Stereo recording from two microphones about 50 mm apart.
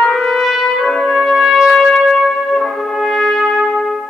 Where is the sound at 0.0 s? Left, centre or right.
Centre.